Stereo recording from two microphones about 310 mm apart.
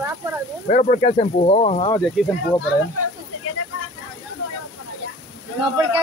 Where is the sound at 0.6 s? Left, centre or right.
Left.